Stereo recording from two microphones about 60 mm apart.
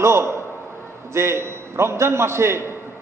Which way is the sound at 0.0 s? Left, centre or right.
Right.